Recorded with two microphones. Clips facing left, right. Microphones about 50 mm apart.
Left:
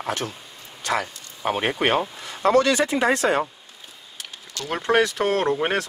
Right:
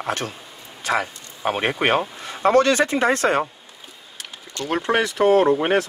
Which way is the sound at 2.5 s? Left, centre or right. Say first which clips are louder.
Right 2 dB; right.